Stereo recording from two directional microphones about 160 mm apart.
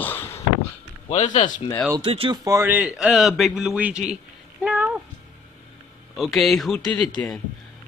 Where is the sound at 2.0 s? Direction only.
35° right (ahead or behind).